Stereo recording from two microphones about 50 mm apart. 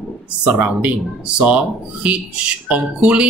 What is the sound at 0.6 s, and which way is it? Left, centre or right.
Speech, right.